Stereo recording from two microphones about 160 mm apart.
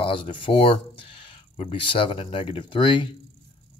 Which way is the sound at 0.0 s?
35° left (ahead or behind).